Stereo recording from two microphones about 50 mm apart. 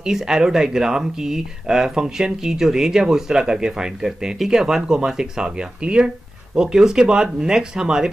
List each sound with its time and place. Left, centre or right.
0.0 s speech: centre